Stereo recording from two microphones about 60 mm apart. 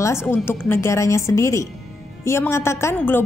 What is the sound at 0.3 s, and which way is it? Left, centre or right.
Speech, left.